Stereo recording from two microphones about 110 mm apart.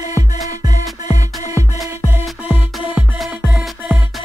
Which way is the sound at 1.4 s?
30° right (ahead or behind).